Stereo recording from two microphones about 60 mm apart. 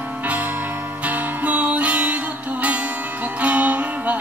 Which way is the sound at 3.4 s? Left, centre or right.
Right.